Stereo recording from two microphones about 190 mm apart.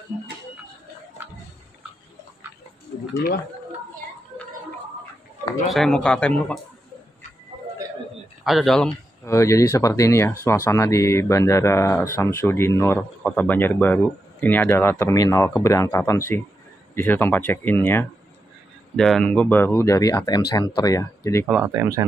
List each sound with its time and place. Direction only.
5.7 s speech: centre (ahead or behind)
8.5 s speech: centre (ahead or behind)
9.2 s speech: 15° left (ahead or behind)
21.5 s speech: 10° right (ahead or behind)